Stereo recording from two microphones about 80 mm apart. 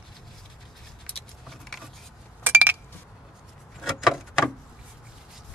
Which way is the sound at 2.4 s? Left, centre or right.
Right.